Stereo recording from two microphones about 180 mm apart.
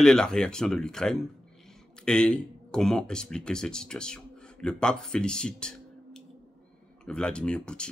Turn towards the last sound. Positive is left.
turn(degrees=5)  # may be behind; listen again after turning